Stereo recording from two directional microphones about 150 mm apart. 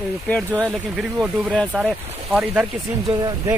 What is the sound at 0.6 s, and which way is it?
Speech, 5° right (ahead or behind).